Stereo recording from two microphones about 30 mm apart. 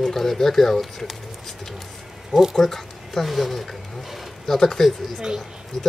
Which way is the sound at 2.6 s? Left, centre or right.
Centre.